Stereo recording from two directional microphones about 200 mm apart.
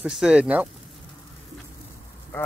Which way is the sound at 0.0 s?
5° right (ahead or behind).